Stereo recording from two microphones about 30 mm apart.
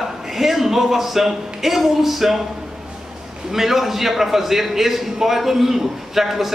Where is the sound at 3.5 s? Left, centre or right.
Centre.